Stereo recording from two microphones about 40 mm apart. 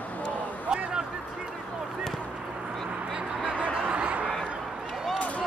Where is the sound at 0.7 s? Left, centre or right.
Right.